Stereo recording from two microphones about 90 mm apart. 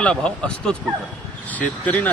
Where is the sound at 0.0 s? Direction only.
10° left (ahead or behind).